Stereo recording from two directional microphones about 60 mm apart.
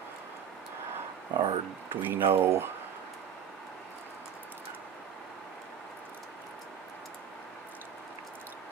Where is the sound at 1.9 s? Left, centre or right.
Right.